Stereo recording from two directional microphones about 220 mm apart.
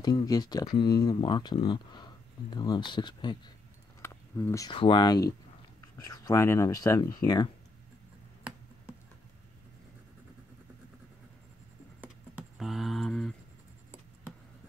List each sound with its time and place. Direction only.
0.0 s speech: 20° left (ahead or behind)
12.0 s keys jangling: 5° right (ahead or behind)